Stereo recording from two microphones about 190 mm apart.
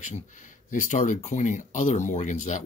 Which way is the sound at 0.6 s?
40° left (ahead or behind).